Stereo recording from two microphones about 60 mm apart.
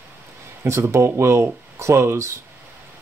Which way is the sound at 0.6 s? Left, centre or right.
Right.